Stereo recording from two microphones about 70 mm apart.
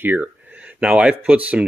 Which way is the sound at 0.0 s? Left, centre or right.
Right.